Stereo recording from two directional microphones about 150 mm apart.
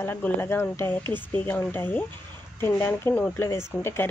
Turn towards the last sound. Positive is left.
turn(degrees=15)  # may be behind; listen again after turning